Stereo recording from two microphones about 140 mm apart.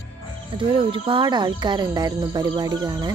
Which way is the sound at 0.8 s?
35° right (ahead or behind).